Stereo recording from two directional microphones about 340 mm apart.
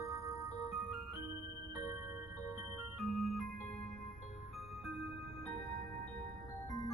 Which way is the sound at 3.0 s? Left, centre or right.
Centre.